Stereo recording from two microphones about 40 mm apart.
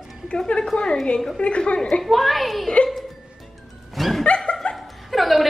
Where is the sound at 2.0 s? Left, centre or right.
Centre.